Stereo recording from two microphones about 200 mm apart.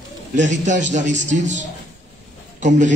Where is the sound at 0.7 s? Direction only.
40° right (ahead or behind).